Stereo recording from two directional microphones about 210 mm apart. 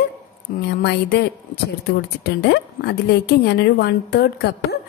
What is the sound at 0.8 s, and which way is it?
Speech, 55° left (ahead or behind).